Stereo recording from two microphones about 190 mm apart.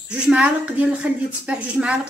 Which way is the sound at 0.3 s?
5° right (ahead or behind).